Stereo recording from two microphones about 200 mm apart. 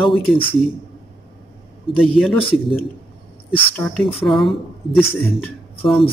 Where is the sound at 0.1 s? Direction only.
25° left (ahead or behind).